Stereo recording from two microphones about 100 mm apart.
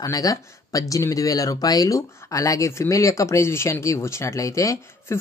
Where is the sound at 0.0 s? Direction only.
35° left (ahead or behind).